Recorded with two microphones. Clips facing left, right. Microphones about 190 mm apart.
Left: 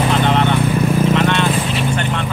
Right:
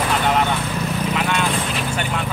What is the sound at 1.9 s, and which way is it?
Speech, 5° right (ahead or behind).